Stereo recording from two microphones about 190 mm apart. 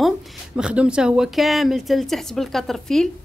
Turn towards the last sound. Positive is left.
turn(degrees=0)  # may be behind; listen again after turning